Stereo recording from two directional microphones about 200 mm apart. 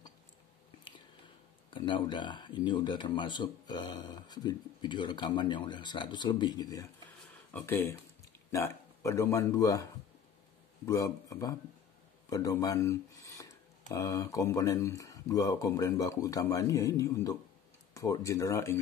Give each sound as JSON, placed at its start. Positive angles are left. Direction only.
{"t": 1.7, "sound": "speech", "side_deg": 25}
{"t": 10.9, "sound": "speech", "side_deg": 15}